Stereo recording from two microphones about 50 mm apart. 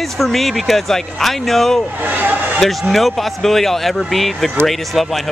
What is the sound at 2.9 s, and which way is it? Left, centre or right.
Speech, centre.